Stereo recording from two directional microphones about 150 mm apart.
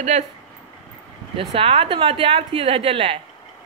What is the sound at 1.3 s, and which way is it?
A woman's voice, 40° right (ahead or behind).